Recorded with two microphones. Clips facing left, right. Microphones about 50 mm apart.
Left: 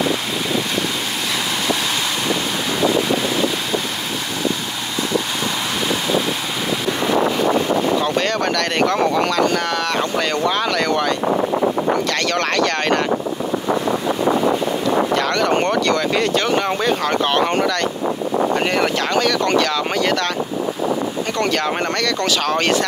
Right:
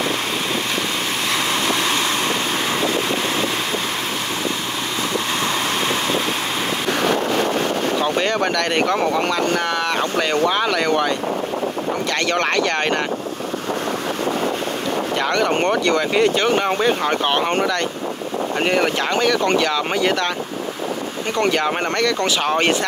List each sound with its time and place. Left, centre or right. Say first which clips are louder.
8.2 s speech: even; centre
9.9 s speech: even; centre
15.1 s speech: left 1 dB; centre
18.6 s speech: even; centre
21.4 s speech: right 2 dB; centre